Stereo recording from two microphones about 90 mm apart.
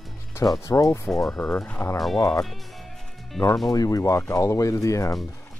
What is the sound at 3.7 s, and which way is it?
Speech, 40° left (ahead or behind).